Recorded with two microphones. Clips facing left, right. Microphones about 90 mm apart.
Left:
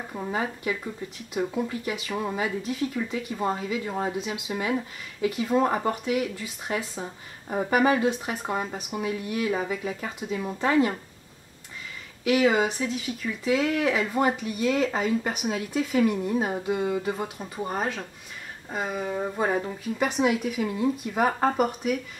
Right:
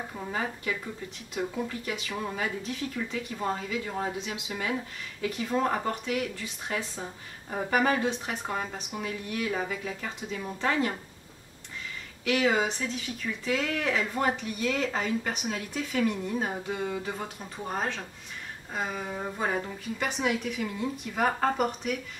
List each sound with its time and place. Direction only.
0.1 s speech: 10° left (ahead or behind)
12.3 s speech: 5° left (ahead or behind)